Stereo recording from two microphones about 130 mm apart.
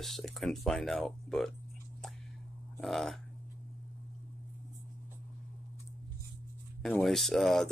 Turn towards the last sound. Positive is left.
turn(degrees=0)  # may be behind; listen again after turning